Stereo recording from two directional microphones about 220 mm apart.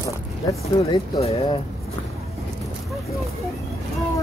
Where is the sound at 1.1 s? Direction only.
25° left (ahead or behind).